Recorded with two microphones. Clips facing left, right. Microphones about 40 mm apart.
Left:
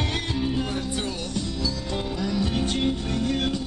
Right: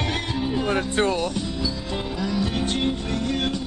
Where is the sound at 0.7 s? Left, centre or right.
Right.